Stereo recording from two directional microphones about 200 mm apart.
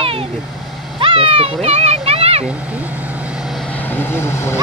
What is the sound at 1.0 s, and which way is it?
Speech, 25° right (ahead or behind).